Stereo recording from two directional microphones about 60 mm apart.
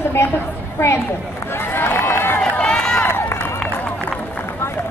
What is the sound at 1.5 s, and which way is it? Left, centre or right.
Crowd, left.